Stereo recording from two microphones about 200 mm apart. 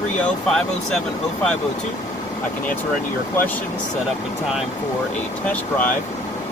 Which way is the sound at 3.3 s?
10° left (ahead or behind).